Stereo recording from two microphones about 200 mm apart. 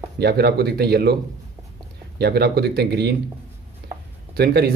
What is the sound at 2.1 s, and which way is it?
Speech, 55° right (ahead or behind).